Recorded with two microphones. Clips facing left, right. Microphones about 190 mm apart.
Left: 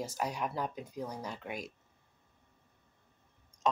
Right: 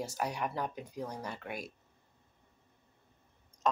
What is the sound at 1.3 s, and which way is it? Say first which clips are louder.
Speech: even; 5° right (ahead or behind).